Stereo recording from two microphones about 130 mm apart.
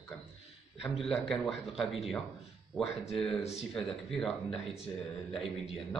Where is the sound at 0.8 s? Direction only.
Centre (ahead or behind).